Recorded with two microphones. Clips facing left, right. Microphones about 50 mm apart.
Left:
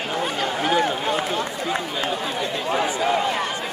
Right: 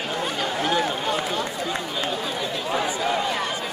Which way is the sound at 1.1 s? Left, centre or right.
Centre.